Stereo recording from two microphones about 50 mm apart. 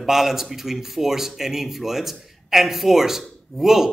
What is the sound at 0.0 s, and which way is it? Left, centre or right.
A man's voice, centre.